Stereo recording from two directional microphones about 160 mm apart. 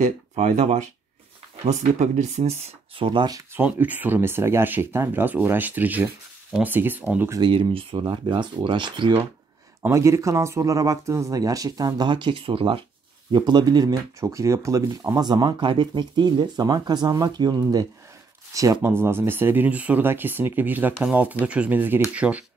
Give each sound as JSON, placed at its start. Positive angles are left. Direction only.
{"t": 0.0, "sound": "speech", "side_deg": -45}
{"t": 3.5, "sound": "speech", "side_deg": -10}
{"t": 7.3, "sound": "speech", "side_deg": -30}
{"t": 9.8, "sound": "speech", "side_deg": -20}